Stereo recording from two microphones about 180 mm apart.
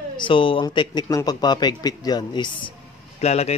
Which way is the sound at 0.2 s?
30° left (ahead or behind).